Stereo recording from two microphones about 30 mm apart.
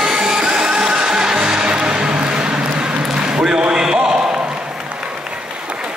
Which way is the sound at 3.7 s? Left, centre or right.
Right.